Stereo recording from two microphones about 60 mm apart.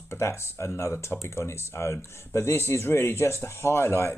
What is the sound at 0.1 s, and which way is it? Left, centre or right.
Speech, left.